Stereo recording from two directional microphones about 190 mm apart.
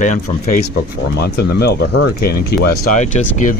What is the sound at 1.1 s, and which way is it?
Speech, 55° left (ahead or behind).